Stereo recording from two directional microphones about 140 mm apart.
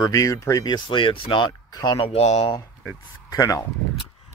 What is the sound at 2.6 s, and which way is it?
Speech, 25° left (ahead or behind).